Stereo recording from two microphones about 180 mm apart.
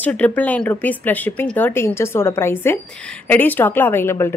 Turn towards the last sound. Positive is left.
turn(degrees=15)  # may be behind; listen again after turning